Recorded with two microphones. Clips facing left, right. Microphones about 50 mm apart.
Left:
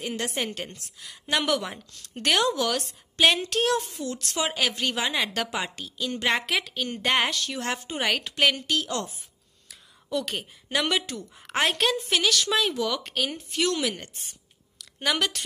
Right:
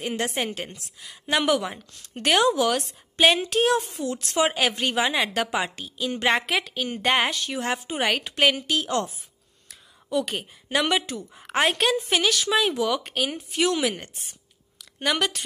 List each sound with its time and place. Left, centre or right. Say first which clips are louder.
0.0 s a woman's voice: right 3 dB; right
0.5 s a woman's voice: right 2 dB; centre
8.8 s a woman's voice: right 5 dB; right
10.0 s a woman's voice: right 3 dB; centre